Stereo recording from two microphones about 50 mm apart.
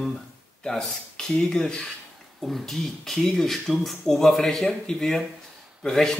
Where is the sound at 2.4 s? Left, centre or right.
Centre.